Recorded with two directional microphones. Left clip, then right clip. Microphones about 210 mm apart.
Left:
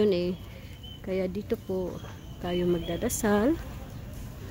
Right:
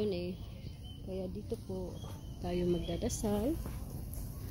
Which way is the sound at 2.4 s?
5° left (ahead or behind).